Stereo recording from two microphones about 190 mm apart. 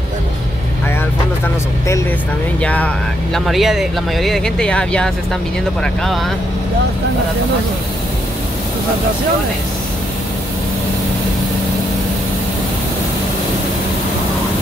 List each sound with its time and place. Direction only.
2.6 s speech: 10° left (ahead or behind)